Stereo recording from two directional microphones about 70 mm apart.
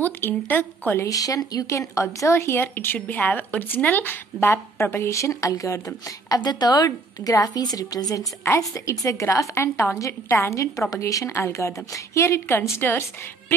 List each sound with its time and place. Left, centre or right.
0.0 s a woman's voice: left
1.0 s speech: left
5.1 s a woman's voice: left
8.5 s a woman's voice: left
12.7 s speech: left